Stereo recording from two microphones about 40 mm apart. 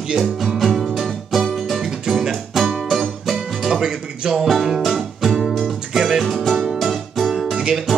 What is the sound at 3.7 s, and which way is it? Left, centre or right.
Music, centre.